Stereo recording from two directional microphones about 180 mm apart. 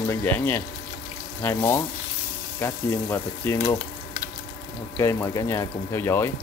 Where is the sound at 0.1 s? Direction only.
15° left (ahead or behind).